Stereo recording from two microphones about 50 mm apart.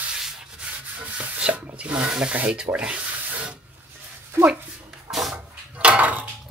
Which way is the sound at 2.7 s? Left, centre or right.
Right.